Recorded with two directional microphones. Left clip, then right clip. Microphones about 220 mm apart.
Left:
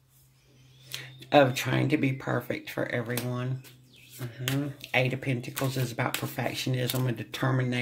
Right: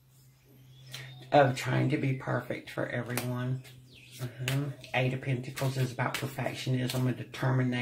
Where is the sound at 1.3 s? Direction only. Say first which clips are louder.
Left 2 dB; 45° left (ahead or behind).